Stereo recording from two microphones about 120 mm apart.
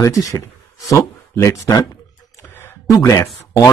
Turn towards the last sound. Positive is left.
turn(degrees=25)  # may be behind; listen again after turning